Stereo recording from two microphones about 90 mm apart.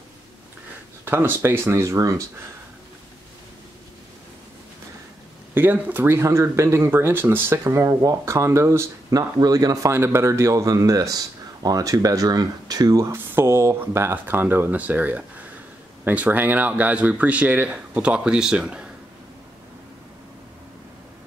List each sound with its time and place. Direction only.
1.0 s speech: 25° right (ahead or behind)
5.5 s speech: 20° right (ahead or behind)
9.4 s speech: 45° right (ahead or behind)
9.9 s speech: 30° right (ahead or behind)
13.1 s speech: 25° right (ahead or behind); by 18.9 s 10° right (ahead or behind)